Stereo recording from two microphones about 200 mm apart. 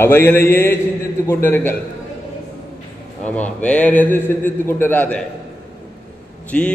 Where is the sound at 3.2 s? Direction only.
5° left (ahead or behind).